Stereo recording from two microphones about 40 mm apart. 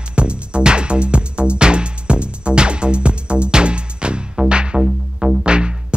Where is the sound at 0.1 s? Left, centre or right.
Right.